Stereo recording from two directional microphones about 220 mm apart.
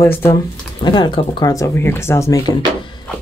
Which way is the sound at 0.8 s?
20° left (ahead or behind).